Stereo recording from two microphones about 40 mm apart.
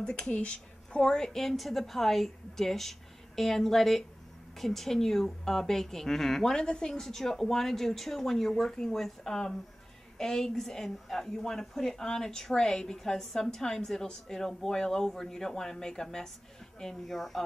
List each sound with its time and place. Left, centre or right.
0.3 s speech: left
1.0 s a woman's voice: centre